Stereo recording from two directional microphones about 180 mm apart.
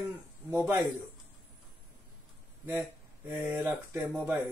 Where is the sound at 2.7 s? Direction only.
10° right (ahead or behind).